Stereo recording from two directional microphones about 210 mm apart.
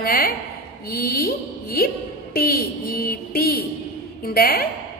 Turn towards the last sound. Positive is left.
turn(degrees=45)  # may be behind; listen again after turning